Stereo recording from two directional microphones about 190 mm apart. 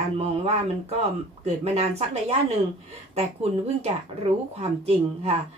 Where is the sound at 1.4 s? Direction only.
35° right (ahead or behind).